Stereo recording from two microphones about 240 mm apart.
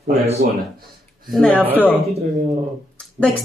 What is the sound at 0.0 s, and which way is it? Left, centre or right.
Speech, right.